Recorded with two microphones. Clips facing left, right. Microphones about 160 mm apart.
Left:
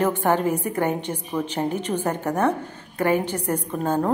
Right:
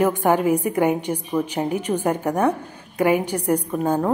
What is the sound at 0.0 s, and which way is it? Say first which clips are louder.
A woman's voice: right 2 dB; 10° right (ahead or behind).